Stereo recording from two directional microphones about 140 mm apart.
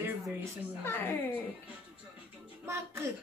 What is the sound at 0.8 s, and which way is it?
Speech, 15° left (ahead or behind).